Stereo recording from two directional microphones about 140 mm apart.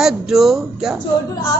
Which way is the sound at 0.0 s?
Centre (ahead or behind).